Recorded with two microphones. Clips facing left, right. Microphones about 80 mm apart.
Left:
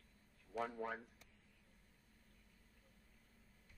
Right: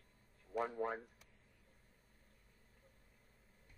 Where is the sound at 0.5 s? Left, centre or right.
Right.